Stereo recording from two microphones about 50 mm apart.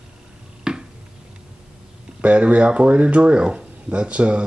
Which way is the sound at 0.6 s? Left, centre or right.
Centre.